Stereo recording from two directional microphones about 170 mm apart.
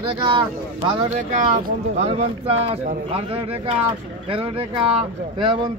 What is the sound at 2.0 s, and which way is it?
Speech, 35° right (ahead or behind).